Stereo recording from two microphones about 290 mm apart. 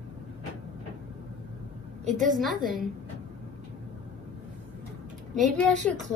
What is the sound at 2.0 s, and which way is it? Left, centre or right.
Speech, right.